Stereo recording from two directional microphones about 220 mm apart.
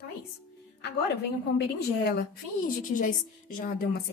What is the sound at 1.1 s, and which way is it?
A woman's voice, 50° left (ahead or behind).